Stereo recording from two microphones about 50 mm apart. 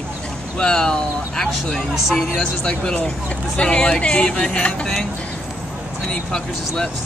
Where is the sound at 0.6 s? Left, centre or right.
Centre.